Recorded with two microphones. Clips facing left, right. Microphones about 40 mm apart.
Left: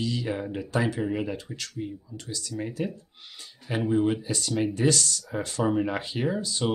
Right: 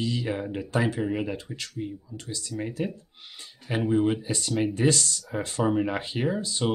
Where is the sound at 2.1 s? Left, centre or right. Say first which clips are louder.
Even; right.